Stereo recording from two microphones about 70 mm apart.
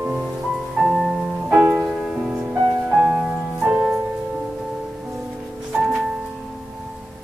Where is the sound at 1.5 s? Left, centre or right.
Centre.